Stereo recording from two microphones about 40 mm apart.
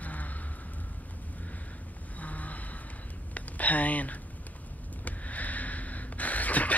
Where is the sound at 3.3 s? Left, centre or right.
Left.